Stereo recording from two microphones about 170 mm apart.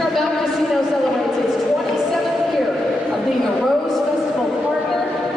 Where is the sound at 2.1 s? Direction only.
Centre (ahead or behind).